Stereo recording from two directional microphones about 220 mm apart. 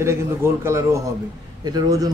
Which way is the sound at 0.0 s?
10° right (ahead or behind).